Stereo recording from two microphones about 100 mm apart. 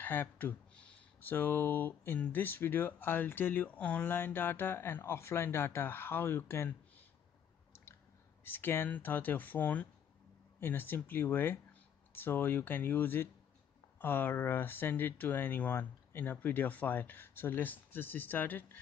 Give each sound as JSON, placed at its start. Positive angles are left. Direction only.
{"t": 0.0, "sound": "speech", "side_deg": 20}
{"t": 8.5, "sound": "speech", "side_deg": 20}